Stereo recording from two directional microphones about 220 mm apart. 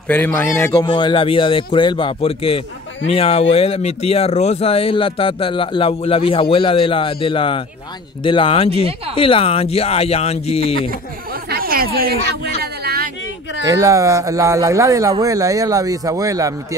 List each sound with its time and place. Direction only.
0.1 s a man's voice: 10° left (ahead or behind)
0.7 s speech: 20° left (ahead or behind)
11.4 s a sound: 45° right (ahead or behind)
13.7 s speech: 15° right (ahead or behind)